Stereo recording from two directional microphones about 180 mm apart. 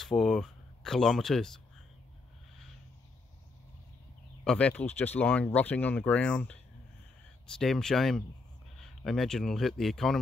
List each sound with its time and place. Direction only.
0.0 s speech: centre (ahead or behind)
4.5 s speech: 5° left (ahead or behind)